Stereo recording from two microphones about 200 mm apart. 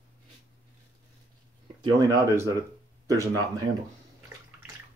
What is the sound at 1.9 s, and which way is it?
Speech, 20° right (ahead or behind).